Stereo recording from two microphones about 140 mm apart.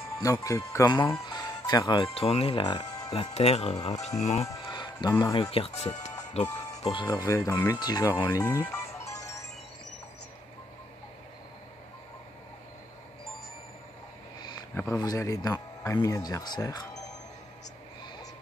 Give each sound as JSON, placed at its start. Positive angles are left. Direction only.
{"t": 0.2, "sound": "speech", "side_deg": 25}
{"t": 1.1, "sound": "music", "side_deg": 25}
{"t": 2.1, "sound": "speech", "side_deg": 45}
{"t": 3.1, "sound": "speech", "side_deg": 45}
{"t": 3.7, "sound": "speech", "side_deg": 25}
{"t": 4.2, "sound": "speech", "side_deg": 55}
{"t": 4.5, "sound": "music", "side_deg": 30}
{"t": 5.2, "sound": "speech", "side_deg": 35}
{"t": 6.8, "sound": "speech", "side_deg": 40}
{"t": 7.1, "sound": "speech", "side_deg": 25}
{"t": 9.2, "sound": "music", "side_deg": 20}
{"t": 15.0, "sound": "speech", "side_deg": 25}